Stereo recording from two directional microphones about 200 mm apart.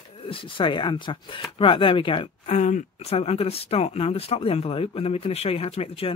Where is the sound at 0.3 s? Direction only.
25° left (ahead or behind).